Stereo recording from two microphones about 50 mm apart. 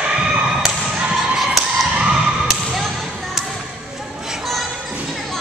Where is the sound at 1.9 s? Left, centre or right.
Centre.